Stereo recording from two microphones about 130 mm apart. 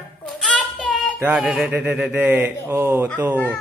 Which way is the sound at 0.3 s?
5° left (ahead or behind).